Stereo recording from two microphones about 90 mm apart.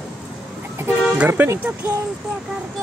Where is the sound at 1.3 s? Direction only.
25° right (ahead or behind).